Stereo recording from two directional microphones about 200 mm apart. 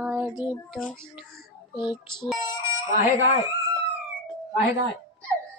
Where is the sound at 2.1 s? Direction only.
Centre (ahead or behind).